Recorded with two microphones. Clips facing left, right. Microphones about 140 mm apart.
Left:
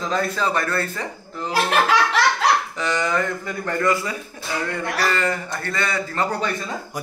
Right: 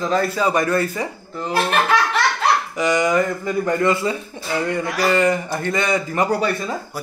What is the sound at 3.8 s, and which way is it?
A man's voice, 25° right (ahead or behind).